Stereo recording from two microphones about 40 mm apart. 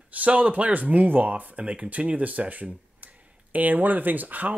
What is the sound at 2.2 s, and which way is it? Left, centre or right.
Speech, right.